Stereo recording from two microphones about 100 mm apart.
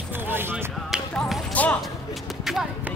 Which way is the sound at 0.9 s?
5° right (ahead or behind).